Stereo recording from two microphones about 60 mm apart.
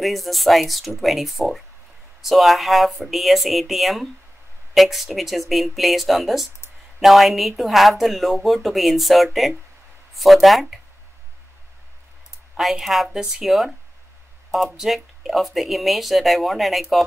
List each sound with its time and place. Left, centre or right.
0.0 s speech: centre
12.5 s speech: centre